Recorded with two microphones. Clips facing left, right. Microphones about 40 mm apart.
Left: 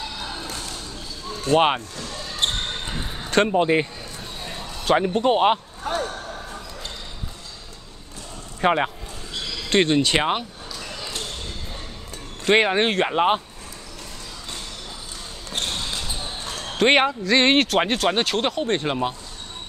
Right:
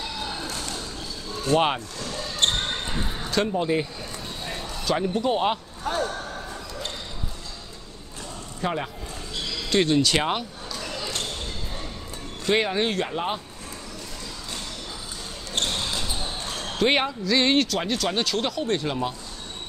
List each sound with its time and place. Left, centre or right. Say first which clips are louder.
1.5 s basketball bounce: left 3 dB; left
3.3 s a man's voice: left 6 dB; left
4.8 s speech: left 5 dB; left
8.5 s speech: left 8 dB; left
12.4 s speech: left 5 dB; left
16.7 s speech: left 5 dB; left